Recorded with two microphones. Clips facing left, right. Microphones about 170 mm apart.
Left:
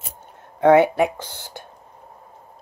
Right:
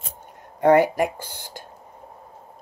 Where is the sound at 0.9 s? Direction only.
10° right (ahead or behind).